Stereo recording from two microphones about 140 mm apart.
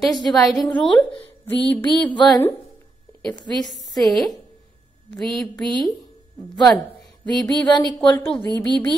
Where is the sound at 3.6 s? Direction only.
Centre (ahead or behind).